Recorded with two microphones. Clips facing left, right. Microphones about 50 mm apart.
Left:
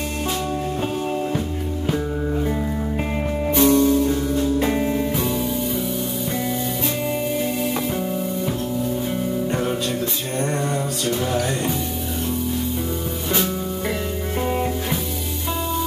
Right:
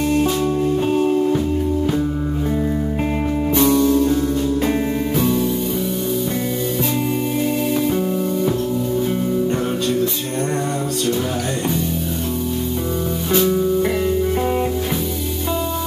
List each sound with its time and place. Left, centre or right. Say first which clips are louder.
3.6 s music: even; left
4.0 s music: right 3 dB; centre
4.6 s music: right 1 dB; centre